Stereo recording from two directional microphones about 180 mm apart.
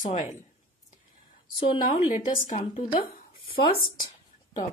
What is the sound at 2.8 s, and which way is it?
Speech, 25° left (ahead or behind).